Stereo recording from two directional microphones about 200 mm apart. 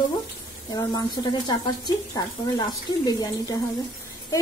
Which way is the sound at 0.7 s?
20° left (ahead or behind).